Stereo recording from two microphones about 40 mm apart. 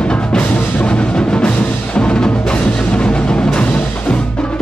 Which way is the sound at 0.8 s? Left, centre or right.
Left.